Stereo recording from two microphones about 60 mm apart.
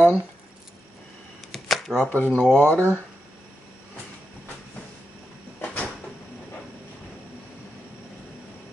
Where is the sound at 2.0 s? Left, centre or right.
Left.